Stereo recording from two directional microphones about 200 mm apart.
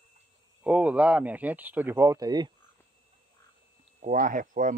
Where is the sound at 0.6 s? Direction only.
5° right (ahead or behind).